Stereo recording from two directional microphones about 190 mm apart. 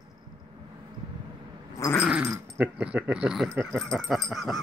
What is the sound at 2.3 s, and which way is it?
Speech, 5° right (ahead or behind).